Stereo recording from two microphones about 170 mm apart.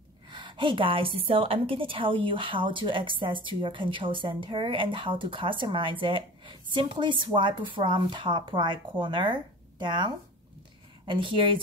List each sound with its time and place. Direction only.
0.3 s a woman's voice: 25° right (ahead or behind)